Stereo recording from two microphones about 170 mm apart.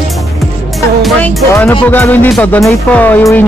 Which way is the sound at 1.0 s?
5° left (ahead or behind).